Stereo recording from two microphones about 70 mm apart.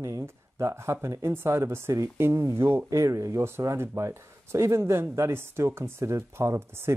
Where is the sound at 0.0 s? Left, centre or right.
Right.